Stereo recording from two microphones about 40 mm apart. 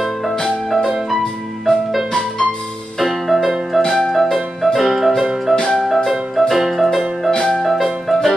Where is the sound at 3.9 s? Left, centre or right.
Centre.